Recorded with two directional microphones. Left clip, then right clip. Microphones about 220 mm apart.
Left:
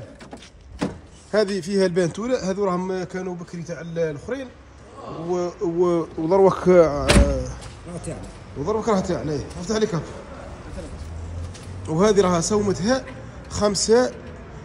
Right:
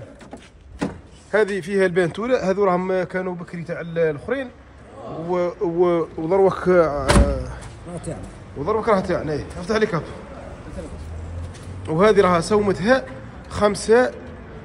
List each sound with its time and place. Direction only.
1.3 s a man's voice: 25° left (ahead or behind)
5.6 s speech: 20° left (ahead or behind)
7.2 s a sound: 30° left (ahead or behind)
8.1 s a man's voice: 25° right (ahead or behind)
8.6 s speech: 20° left (ahead or behind)
11.8 s speech: 20° left (ahead or behind)